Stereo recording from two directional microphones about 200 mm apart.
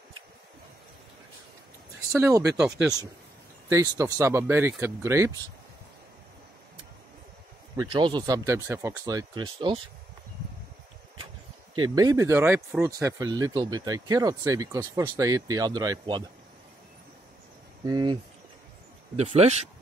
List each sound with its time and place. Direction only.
2.1 s speech: 15° right (ahead or behind)
3.6 s speech: 15° right (ahead or behind)
7.9 s speech: 25° right (ahead or behind)
11.8 s speech: 20° right (ahead or behind)
17.8 s speech: 20° right (ahead or behind)
19.1 s speech: 30° right (ahead or behind)